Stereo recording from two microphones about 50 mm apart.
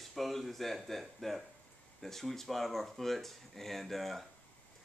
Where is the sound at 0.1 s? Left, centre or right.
Centre.